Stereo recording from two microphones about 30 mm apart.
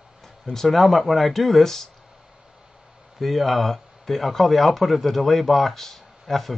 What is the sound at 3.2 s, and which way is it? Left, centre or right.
Speech, centre.